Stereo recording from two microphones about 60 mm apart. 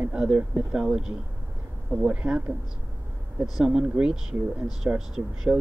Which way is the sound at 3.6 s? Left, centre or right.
Centre.